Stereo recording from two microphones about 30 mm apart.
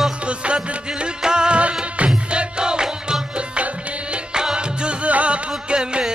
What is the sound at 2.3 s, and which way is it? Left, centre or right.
Music, right.